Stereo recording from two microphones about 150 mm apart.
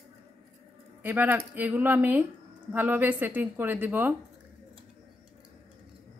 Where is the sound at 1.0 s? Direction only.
10° right (ahead or behind).